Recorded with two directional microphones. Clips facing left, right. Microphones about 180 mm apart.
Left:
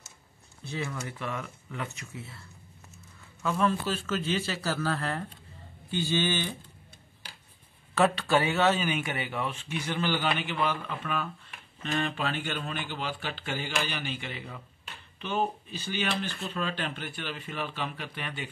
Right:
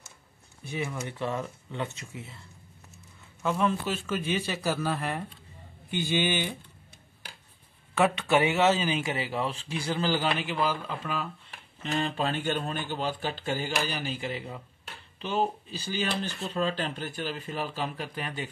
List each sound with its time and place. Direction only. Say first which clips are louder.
0.7 s speech: right 2 dB; 15° right (ahead or behind)
3.4 s a man's voice: even; 15° right (ahead or behind)
7.9 s speech: even; 15° right (ahead or behind); by 18.5 s 40° right (ahead or behind)